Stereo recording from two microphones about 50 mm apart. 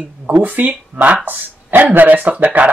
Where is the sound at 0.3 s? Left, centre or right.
Right.